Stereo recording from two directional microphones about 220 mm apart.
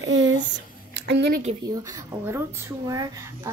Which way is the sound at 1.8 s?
15° right (ahead or behind).